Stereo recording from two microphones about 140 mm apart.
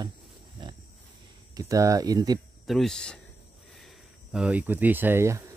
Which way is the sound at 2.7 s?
5° left (ahead or behind).